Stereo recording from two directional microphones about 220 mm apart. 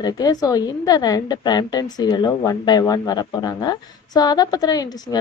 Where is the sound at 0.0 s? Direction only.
15° left (ahead or behind).